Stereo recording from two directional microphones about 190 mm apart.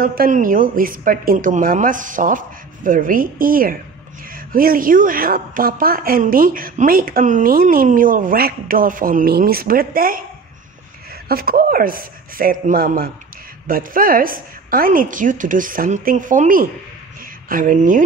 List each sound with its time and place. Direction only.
0.0 s a woman's voice: 50° right (ahead or behind)
11.2 s a woman's voice: 50° right (ahead or behind)